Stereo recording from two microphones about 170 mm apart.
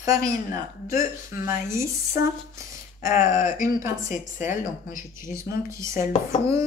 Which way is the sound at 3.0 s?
50° left (ahead or behind).